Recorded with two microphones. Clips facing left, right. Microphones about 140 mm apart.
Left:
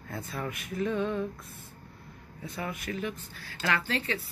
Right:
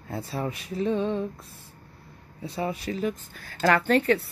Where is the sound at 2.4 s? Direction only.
30° right (ahead or behind).